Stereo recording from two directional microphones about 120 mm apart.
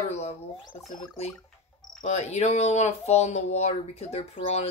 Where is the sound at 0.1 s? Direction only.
60° left (ahead or behind).